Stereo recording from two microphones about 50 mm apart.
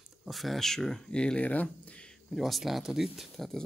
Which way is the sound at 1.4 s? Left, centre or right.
Left.